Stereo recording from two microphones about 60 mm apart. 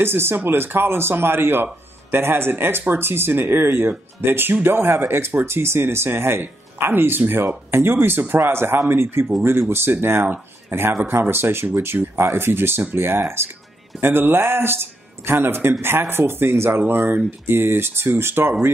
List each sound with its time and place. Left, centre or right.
0.0 s speech: right